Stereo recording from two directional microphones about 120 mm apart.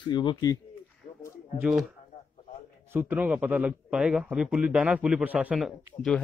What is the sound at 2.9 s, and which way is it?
A man's voice, 15° right (ahead or behind).